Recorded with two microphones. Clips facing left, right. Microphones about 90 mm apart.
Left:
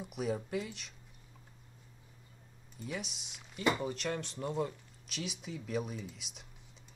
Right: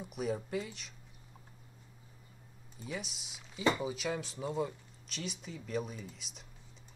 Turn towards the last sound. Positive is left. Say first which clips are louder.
# left 3 dB
turn(degrees=0)  # may be behind; listen again after turning